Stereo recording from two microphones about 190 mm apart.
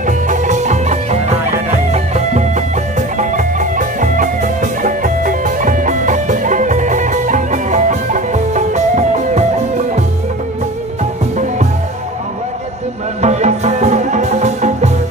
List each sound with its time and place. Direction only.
0.0 s music: 40° right (ahead or behind)
13.2 s music: 35° right (ahead or behind)